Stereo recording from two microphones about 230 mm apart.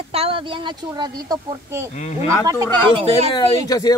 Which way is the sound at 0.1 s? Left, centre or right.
Right.